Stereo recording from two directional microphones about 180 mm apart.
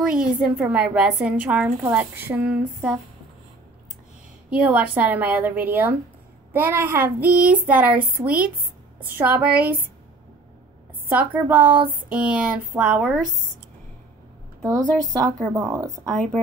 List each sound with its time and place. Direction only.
0.2 s a woman's voice: 5° right (ahead or behind)
4.5 s a woman's voice: 5° right (ahead or behind)
11.1 s a woman's voice: 10° right (ahead or behind)
14.7 s a woman's voice: 20° right (ahead or behind)